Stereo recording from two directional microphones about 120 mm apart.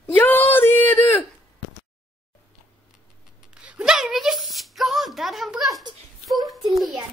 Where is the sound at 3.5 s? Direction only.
10° right (ahead or behind).